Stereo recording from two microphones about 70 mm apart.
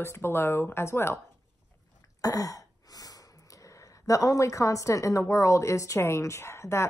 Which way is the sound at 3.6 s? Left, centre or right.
Left.